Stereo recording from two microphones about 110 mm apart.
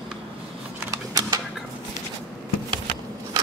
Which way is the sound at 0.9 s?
35° right (ahead or behind).